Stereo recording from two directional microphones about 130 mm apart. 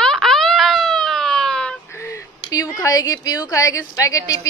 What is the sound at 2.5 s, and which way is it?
A woman's voice, 25° left (ahead or behind).